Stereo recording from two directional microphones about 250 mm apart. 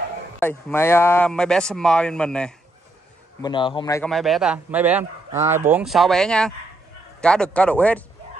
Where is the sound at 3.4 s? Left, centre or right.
Centre.